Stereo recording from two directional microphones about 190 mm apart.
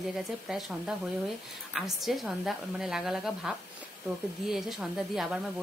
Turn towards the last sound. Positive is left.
turn(degrees=0)  # may be behind; listen again after turning